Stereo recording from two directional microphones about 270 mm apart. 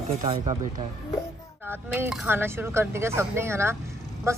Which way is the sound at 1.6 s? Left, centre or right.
Centre.